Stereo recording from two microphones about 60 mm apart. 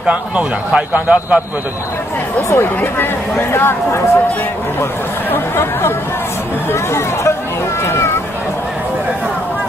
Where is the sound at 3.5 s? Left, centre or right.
Left.